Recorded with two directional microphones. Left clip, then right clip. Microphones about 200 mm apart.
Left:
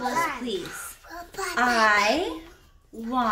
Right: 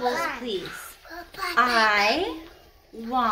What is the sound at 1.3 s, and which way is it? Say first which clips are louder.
Speech: right 1 dB; 25° left (ahead or behind).